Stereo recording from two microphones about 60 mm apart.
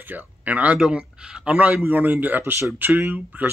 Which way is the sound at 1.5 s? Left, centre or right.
Right.